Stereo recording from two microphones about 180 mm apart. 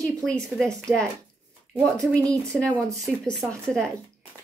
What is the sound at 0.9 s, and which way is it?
Speech, 15° right (ahead or behind).